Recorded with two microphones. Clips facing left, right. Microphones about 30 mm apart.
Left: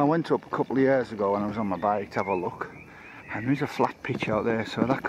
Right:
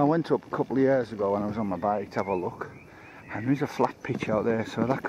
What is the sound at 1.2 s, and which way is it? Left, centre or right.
Speech, left.